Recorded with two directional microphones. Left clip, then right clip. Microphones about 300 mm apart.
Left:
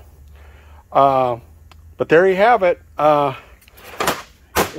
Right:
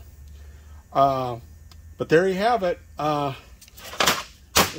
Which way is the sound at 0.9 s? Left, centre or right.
Left.